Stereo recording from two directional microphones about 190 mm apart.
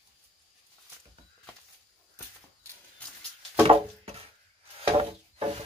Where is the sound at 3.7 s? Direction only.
30° right (ahead or behind).